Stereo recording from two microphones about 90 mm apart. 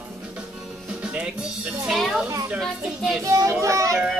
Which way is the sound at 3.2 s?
35° right (ahead or behind).